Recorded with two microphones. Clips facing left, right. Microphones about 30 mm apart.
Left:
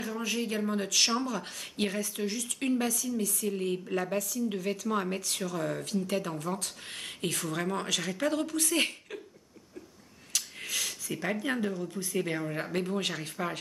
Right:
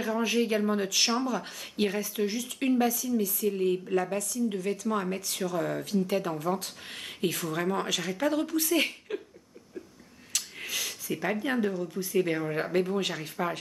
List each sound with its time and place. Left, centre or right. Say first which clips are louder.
0.0 s speech: right 6 dB; centre
4.5 s speech: right 2 dB; centre
4.8 s speech: right 1 dB; centre
10.3 s a sound: right 1 dB; centre
11.7 s speech: right 4 dB; centre
12.4 s speech: right 4 dB; centre
12.7 s speech: right 3 dB; centre